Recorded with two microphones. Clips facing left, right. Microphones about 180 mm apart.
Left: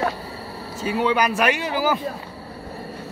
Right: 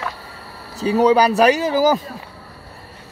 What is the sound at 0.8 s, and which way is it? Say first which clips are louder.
Speech: right 7 dB; 40° right (ahead or behind).